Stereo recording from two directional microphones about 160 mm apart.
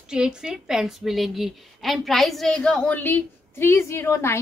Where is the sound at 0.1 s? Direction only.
5° right (ahead or behind).